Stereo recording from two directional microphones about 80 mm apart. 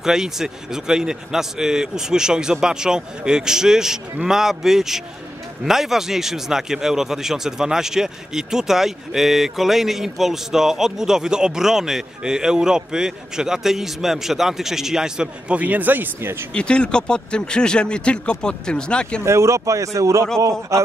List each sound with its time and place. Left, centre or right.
0.0 s a man's voice: centre; by 16.4 s right
16.5 s speech: centre
19.2 s speech: right